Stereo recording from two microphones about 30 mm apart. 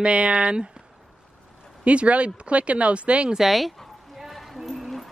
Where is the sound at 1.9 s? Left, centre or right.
Right.